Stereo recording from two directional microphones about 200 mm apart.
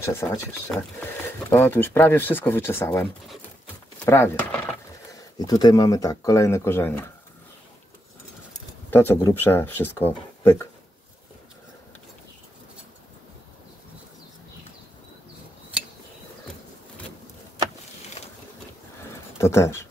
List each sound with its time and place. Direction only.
0.0 s speech: 15° left (ahead or behind)
4.0 s speech: 15° left (ahead or behind)
8.9 s speech: 10° left (ahead or behind)
19.3 s speech: 15° left (ahead or behind)